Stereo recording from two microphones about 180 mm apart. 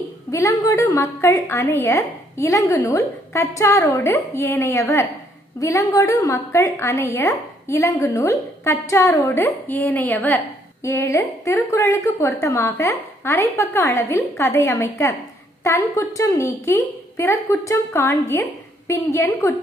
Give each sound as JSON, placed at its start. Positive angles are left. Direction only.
{"t": 0.3, "sound": "a woman's voice", "side_deg": 15}